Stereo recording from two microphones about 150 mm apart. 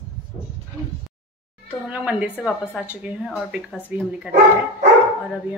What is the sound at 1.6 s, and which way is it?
A woman's voice, 10° right (ahead or behind).